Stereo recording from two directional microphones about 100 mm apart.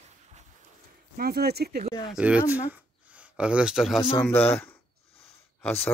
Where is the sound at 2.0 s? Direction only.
10° right (ahead or behind).